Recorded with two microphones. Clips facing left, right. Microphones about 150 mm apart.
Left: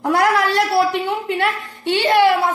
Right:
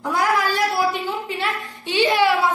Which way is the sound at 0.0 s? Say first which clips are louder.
Left 4 dB; 70° left (ahead or behind).